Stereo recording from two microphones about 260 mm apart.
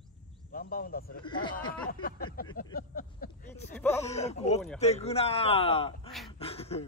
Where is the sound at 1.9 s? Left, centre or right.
Left.